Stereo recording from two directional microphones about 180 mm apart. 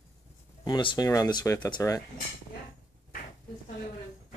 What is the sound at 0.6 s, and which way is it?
Speech, 25° left (ahead or behind).